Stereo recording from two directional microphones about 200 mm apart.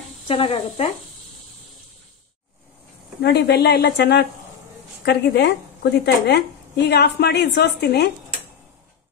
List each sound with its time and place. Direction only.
0.3 s speech: 30° left (ahead or behind)
3.2 s a woman's voice: 55° left (ahead or behind)